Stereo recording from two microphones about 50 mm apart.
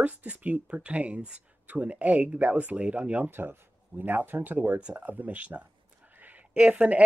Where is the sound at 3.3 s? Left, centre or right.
Right.